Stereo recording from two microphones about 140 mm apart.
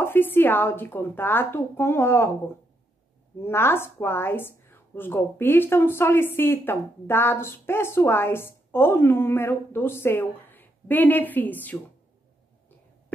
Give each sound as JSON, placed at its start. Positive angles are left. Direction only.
{"t": 0.0, "sound": "a woman's voice", "side_deg": 15}
{"t": 3.4, "sound": "a woman's voice", "side_deg": 15}